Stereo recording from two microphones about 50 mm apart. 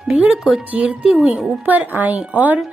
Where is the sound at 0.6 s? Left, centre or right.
Right.